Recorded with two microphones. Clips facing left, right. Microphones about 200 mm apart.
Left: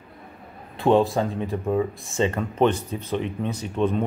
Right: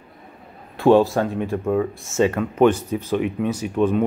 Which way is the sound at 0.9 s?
Centre (ahead or behind).